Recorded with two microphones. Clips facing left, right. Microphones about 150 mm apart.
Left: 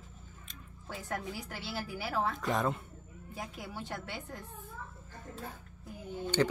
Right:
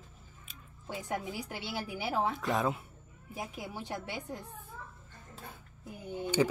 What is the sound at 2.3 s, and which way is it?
Speech, centre (ahead or behind).